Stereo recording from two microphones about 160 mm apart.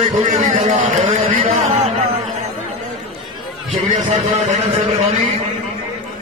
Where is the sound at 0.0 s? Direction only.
50° right (ahead or behind).